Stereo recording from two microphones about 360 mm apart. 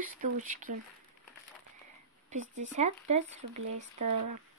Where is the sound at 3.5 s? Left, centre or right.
Right.